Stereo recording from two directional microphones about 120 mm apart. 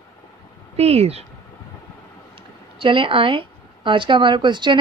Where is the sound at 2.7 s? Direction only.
45° right (ahead or behind).